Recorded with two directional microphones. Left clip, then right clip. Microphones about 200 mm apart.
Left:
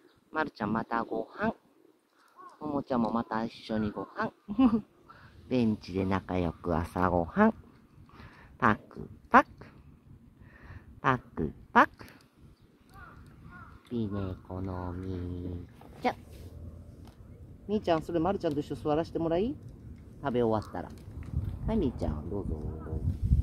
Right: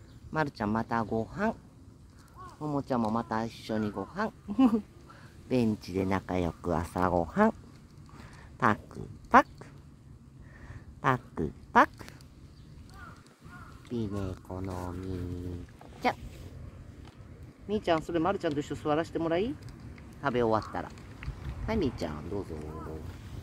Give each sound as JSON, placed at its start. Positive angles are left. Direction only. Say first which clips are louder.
{"t": 0.3, "sound": "speech", "louder": "right 1 dB", "side_deg": -20}
{"t": 8.2, "sound": "a sound", "louder": "even", "side_deg": -10}
{"t": 11.0, "sound": "speech", "louder": "even", "side_deg": -10}
{"t": 13.8, "sound": "speech", "louder": "even", "side_deg": -5}
{"t": 17.6, "sound": "speech", "louder": "even", "side_deg": 10}
{"t": 21.6, "sound": "speech", "louder": "even", "side_deg": 5}